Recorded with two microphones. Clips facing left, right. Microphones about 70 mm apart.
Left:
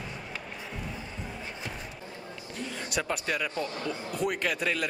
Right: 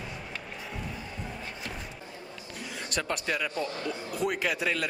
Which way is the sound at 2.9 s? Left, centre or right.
Centre.